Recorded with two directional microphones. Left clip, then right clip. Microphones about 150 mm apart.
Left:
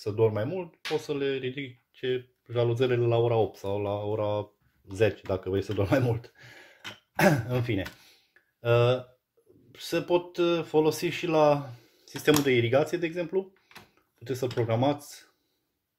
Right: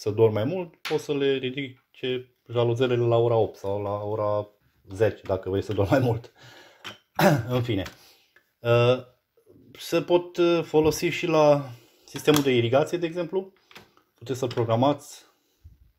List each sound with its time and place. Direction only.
0.0 s speech: 35° right (ahead or behind); by 5.3 s 15° left (ahead or behind)
5.3 s speech: centre (ahead or behind)
6.8 s throat clearing: 5° right (ahead or behind)
7.4 s speech: 10° right (ahead or behind)
8.0 s a sound: 10° right (ahead or behind)
9.7 s speech: 20° right (ahead or behind)
12.1 s speech: 5° right (ahead or behind)